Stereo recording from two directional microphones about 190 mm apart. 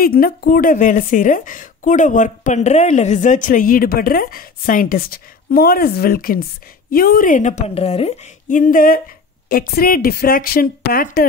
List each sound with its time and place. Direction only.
0.0 s a woman's voice: 50° left (ahead or behind)